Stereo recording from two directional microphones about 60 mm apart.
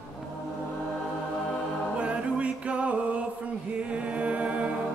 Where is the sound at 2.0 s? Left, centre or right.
Right.